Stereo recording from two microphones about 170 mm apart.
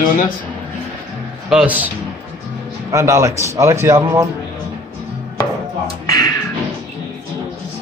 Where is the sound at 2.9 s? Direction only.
15° right (ahead or behind).